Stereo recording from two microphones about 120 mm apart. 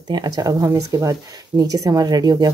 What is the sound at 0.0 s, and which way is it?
Speech, 35° right (ahead or behind).